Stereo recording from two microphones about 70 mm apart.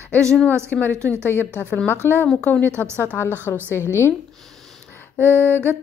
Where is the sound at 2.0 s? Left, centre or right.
Left.